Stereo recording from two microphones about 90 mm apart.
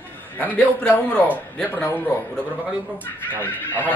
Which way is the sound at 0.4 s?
20° left (ahead or behind).